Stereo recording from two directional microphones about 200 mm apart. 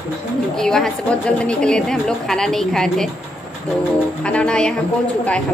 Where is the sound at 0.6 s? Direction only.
Centre (ahead or behind).